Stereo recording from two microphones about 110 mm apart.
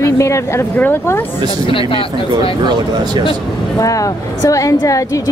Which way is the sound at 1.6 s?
55° left (ahead or behind).